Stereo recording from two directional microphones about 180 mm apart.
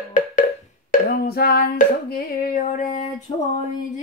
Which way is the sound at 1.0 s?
55° left (ahead or behind).